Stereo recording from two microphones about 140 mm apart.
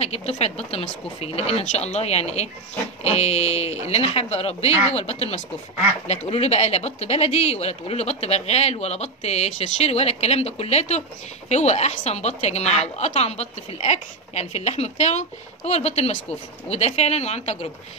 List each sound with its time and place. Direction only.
0.0 s speech: 45° left (ahead or behind)